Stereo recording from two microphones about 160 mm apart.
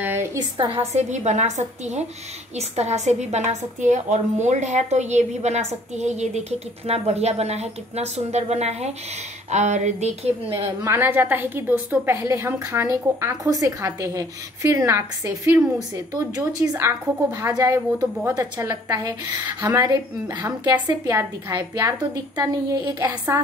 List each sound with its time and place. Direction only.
0.0 s a sound: 15° right (ahead or behind)
0.6 s a woman's voice: 40° right (ahead or behind)
10.8 s a woman's voice: 15° right (ahead or behind)